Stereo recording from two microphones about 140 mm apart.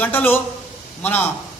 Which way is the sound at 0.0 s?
15° left (ahead or behind).